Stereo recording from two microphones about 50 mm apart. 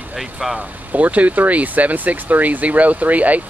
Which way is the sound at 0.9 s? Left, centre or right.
Right.